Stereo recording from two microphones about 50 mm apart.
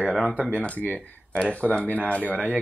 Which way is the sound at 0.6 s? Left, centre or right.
Left.